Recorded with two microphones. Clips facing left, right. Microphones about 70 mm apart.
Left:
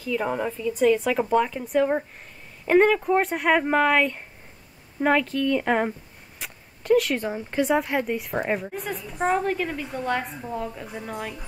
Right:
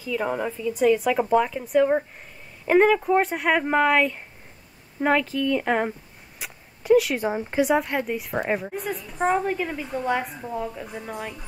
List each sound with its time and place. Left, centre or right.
0.0 s a woman's voice: centre
6.4 s a sound: centre
7.5 s a woman's voice: centre